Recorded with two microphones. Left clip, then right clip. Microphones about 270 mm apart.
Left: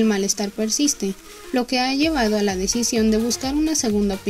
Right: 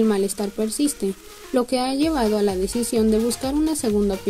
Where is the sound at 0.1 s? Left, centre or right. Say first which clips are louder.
Even; left.